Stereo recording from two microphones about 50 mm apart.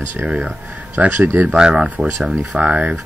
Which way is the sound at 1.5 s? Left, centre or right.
Centre.